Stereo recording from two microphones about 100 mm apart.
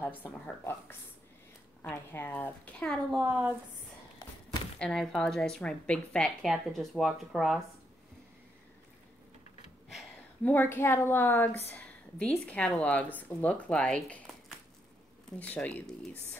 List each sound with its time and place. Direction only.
0.2 s a woman's voice: 25° left (ahead or behind)
3.2 s a woman's voice: 15° right (ahead or behind)
4.7 s speech: 5° left (ahead or behind)
10.4 s a woman's voice: 20° left (ahead or behind)
11.7 s a sound: 10° left (ahead or behind)
12.4 s speech: 10° left (ahead or behind)
15.3 s speech: 15° left (ahead or behind)